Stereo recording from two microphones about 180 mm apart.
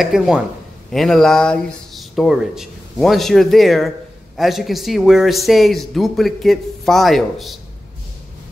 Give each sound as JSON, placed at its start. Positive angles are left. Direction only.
{"t": 0.0, "sound": "a man's voice", "side_deg": 0}